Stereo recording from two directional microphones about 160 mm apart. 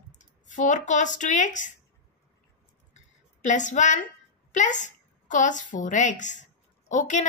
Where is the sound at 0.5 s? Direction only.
50° left (ahead or behind).